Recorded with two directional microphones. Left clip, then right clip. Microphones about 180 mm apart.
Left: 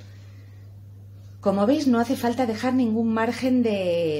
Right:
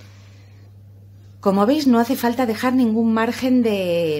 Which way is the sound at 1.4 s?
25° right (ahead or behind).